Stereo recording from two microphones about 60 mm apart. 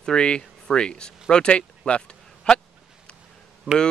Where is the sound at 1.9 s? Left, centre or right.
Centre.